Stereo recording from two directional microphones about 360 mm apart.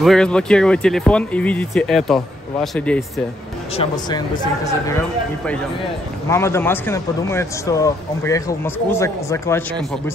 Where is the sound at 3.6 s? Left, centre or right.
Centre.